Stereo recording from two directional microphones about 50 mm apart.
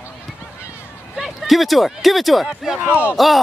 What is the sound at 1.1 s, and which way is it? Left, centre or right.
Speech, centre.